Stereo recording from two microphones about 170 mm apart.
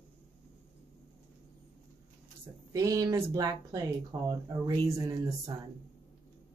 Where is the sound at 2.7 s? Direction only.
20° right (ahead or behind).